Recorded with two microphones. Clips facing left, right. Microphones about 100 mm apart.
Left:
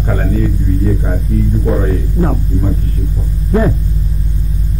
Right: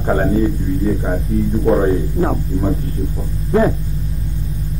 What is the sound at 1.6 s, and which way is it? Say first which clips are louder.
Speech: right 2 dB; 20° right (ahead or behind).